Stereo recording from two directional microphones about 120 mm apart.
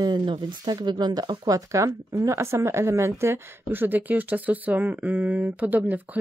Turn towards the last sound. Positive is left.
turn(degrees=-15)  # may be behind; listen again after turning